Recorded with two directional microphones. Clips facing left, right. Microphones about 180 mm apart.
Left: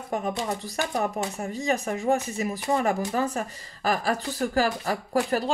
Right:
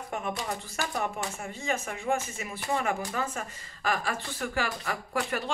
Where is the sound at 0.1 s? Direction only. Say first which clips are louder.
Left 6 dB; 35° left (ahead or behind).